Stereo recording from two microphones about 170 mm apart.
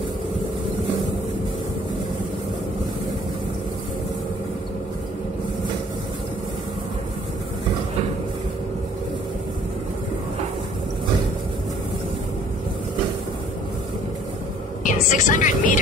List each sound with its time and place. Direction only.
14.8 s speech: 50° left (ahead or behind)